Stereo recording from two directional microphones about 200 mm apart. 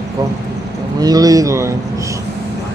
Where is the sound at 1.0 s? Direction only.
20° right (ahead or behind).